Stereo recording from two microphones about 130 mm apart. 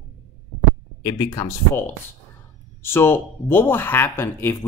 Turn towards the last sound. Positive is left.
turn(degrees=15)  # may be behind; listen again after turning